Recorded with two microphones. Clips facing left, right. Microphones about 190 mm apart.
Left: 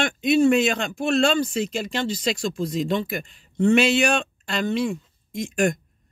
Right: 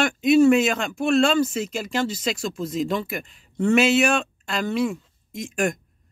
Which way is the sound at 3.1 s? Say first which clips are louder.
Left 2 dB; 35° left (ahead or behind).